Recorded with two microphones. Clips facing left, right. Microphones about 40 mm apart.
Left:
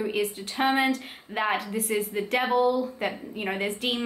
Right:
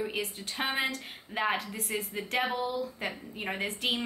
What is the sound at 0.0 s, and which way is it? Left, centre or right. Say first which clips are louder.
A woman's voice: left 6 dB; centre.